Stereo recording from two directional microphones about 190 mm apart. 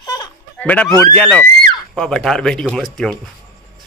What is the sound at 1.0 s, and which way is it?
Speech, 10° left (ahead or behind).